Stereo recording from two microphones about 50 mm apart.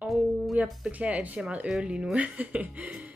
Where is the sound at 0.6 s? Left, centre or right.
Right.